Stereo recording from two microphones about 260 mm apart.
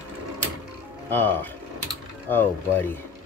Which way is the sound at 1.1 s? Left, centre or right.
Centre.